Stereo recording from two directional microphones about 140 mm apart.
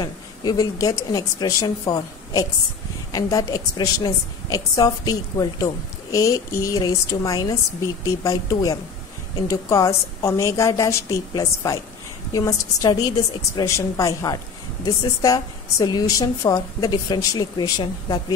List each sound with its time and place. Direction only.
0.0 s a woman's voice: 30° left (ahead or behind)